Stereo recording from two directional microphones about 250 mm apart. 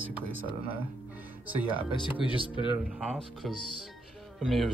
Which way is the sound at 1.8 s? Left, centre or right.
Centre.